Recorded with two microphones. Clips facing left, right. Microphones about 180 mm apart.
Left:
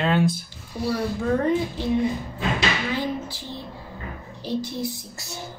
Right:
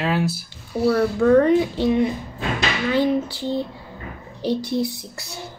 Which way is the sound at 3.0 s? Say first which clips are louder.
Right 8 dB; 70° right (ahead or behind).